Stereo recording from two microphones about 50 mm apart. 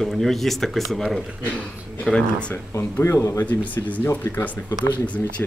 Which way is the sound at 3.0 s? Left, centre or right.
Left.